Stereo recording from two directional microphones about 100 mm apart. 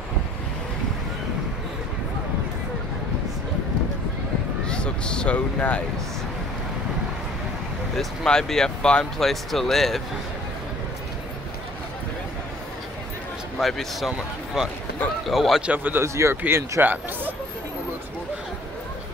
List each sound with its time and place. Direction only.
4.6 s speech: 10° left (ahead or behind)
7.9 s speech: 5° left (ahead or behind)
13.6 s speech: centre (ahead or behind)
15.7 s speech: 20° right (ahead or behind)